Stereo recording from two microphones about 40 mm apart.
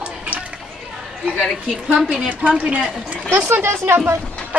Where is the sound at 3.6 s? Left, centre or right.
Right.